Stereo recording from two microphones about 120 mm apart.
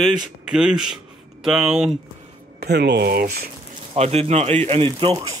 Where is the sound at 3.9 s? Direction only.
60° right (ahead or behind).